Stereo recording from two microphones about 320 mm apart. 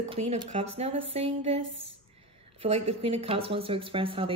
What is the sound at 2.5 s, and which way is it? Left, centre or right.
Speech, centre.